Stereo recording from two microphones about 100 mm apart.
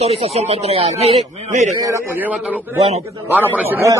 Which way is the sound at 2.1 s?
15° right (ahead or behind).